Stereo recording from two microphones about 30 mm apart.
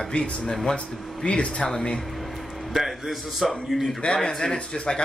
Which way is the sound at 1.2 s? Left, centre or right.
Left.